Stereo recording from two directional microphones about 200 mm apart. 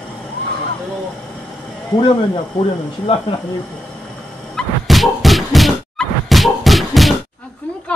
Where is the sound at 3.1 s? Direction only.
30° left (ahead or behind).